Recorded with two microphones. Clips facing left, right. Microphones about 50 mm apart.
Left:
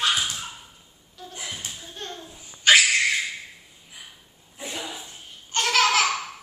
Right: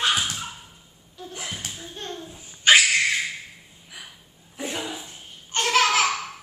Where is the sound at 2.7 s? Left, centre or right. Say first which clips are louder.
Right 1 dB; centre.